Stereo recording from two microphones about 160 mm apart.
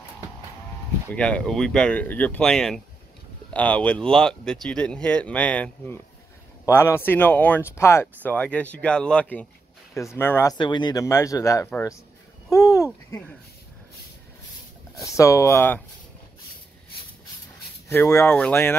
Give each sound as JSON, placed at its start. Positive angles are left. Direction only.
{"t": 1.1, "sound": "speech", "side_deg": 5}
{"t": 10.6, "sound": "speech", "side_deg": 30}
{"t": 15.0, "sound": "speech", "side_deg": 20}
{"t": 17.8, "sound": "speech", "side_deg": 15}